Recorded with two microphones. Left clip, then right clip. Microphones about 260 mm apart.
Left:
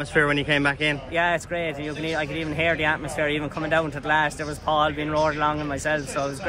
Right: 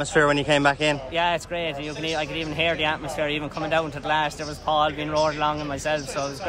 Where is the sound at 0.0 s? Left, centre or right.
Centre.